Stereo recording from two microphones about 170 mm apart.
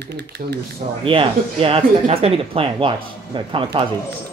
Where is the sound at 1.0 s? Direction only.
30° right (ahead or behind).